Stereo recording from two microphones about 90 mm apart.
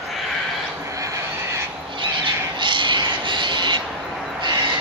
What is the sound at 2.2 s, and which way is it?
Crow, 60° right (ahead or behind).